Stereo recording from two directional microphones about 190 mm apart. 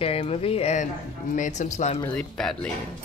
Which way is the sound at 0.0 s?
30° left (ahead or behind).